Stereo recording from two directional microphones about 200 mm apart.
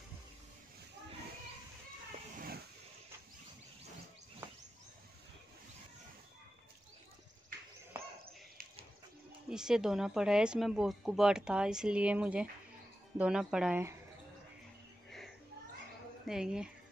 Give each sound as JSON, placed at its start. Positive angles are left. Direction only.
{"t": 2.3, "sound": "vehicle", "side_deg": -45}
{"t": 9.5, "sound": "speech", "side_deg": -5}
{"t": 15.0, "sound": "a sound", "side_deg": 0}
{"t": 16.3, "sound": "speech", "side_deg": -5}